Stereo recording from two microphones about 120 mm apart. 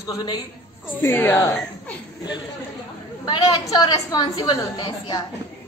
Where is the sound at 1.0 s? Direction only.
20° left (ahead or behind).